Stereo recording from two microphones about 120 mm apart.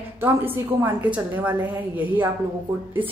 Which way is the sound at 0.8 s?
15° right (ahead or behind).